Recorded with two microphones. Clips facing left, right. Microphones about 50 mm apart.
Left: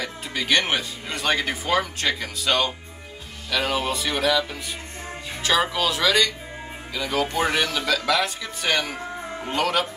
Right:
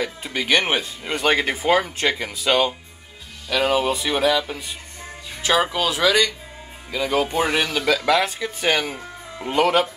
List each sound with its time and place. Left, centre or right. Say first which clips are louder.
0.0 s speech: right 3 dB; centre